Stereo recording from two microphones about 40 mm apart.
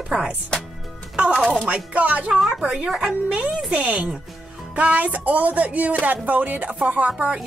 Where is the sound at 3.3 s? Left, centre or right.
Right.